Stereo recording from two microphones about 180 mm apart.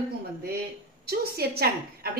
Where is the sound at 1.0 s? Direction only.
60° right (ahead or behind).